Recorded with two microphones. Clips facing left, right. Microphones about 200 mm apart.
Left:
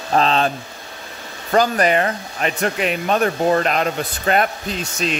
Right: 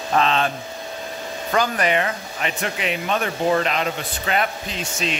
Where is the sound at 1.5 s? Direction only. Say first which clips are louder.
Left 5 dB; 40° left (ahead or behind).